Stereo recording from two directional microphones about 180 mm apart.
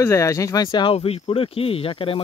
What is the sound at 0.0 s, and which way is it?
Speech, 15° left (ahead or behind).